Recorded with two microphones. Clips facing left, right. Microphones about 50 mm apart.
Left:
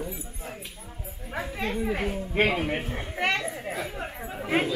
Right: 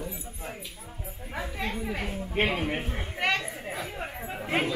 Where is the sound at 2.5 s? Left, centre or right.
Centre.